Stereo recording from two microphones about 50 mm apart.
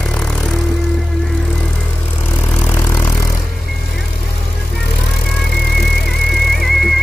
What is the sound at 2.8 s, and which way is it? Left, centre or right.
Vehicle, left.